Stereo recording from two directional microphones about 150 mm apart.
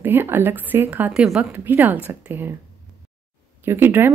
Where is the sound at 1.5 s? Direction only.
15° right (ahead or behind).